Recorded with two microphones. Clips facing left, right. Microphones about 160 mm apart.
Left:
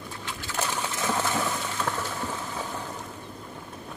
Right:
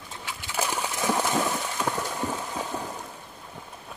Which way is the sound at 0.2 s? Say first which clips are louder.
Right 1 dB; 10° right (ahead or behind).